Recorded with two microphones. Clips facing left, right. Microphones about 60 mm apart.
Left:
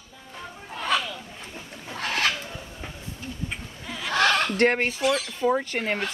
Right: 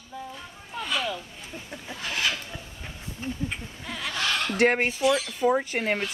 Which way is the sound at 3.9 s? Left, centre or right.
Centre.